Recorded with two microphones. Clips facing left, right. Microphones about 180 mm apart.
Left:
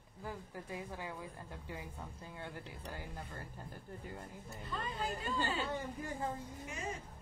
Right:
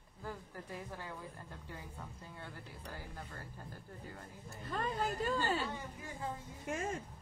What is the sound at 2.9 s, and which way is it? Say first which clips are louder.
Speech: left 1 dB; 20° left (ahead or behind).